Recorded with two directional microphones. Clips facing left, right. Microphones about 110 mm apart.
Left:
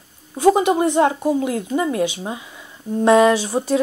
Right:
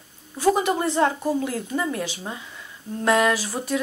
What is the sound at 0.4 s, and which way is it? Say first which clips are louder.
A woman's voice: left 6 dB; 20° left (ahead or behind).